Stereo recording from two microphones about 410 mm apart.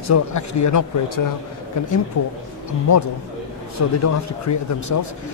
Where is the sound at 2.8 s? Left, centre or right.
Left.